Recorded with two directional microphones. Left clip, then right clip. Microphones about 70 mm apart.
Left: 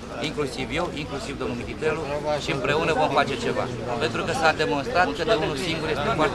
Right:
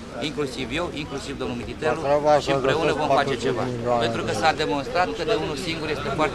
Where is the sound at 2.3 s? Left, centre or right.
Centre.